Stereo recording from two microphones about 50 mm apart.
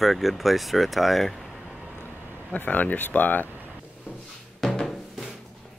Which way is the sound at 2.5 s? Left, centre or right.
Left.